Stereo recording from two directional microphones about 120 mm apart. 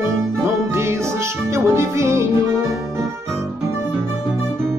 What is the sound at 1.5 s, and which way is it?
Music, 25° right (ahead or behind).